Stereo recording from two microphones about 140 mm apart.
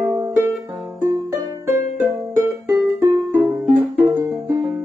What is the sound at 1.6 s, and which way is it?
Music, 20° right (ahead or behind).